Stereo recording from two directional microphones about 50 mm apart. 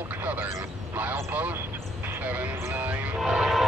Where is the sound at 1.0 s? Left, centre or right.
Right.